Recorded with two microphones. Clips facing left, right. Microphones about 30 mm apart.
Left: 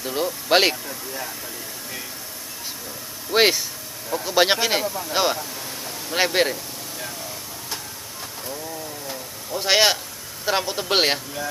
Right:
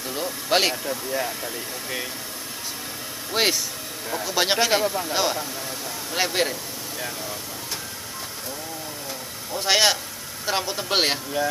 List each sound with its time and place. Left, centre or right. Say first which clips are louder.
0.1 s a man's voice: left 3 dB; centre
0.8 s speech: right 5 dB; centre
3.3 s a man's voice: left 4 dB; centre
9.5 s a man's voice: left 1 dB; centre
11.4 s speech: right 5 dB; right